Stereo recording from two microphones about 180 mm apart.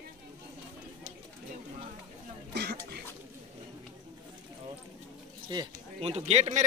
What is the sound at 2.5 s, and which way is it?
Throat clearing, 65° right (ahead or behind).